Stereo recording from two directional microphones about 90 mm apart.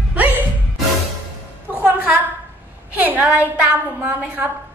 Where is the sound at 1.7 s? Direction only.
20° right (ahead or behind).